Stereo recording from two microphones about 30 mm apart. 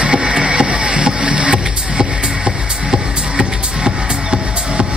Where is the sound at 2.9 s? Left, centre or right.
Right.